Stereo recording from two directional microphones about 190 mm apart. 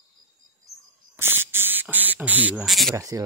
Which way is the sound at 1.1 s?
10° right (ahead or behind).